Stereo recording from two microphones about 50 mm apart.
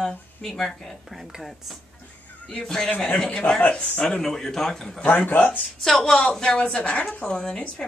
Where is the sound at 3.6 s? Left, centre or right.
Left.